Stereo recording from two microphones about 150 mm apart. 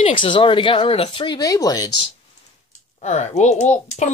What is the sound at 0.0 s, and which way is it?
Speech, 35° left (ahead or behind).